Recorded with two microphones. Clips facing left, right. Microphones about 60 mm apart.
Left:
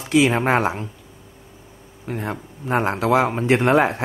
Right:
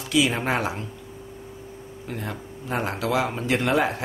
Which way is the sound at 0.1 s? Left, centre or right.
Left.